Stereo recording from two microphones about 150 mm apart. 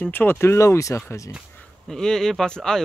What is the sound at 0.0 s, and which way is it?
Speech, 10° left (ahead or behind).